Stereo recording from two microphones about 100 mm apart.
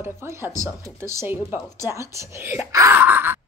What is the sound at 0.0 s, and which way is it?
Speech, 25° right (ahead or behind).